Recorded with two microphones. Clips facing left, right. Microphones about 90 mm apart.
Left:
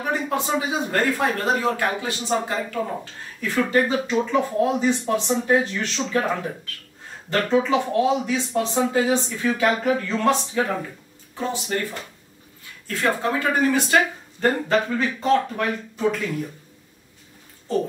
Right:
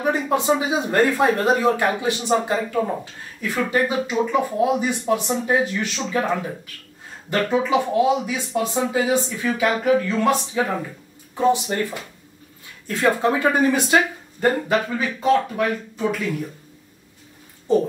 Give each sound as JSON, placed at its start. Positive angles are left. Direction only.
{"t": 0.0, "sound": "speech", "side_deg": -20}